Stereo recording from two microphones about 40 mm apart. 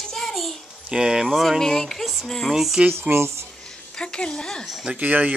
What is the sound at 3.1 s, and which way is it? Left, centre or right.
Speech, right.